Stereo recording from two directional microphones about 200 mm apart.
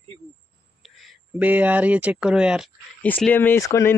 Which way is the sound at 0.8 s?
Centre (ahead or behind).